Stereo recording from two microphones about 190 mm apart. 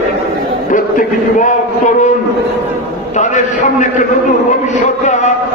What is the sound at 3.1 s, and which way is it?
Speech, 40° left (ahead or behind).